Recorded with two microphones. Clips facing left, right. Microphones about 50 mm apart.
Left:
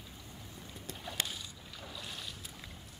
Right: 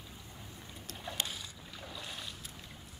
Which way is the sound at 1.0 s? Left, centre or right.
Centre.